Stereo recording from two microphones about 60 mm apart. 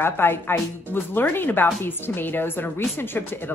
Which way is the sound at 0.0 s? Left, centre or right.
Left.